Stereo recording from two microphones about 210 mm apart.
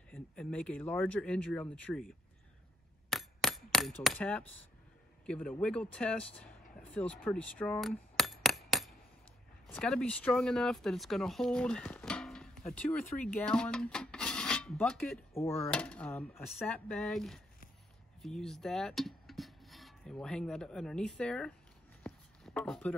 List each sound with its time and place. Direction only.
0.1 s speech: 5° left (ahead or behind)
3.1 s a sound: centre (ahead or behind)
5.2 s speech: 5° left (ahead or behind)
7.2 s a sound: 5° left (ahead or behind)
9.7 s speech: 5° left (ahead or behind)
22.0 s chopping: 5° left (ahead or behind)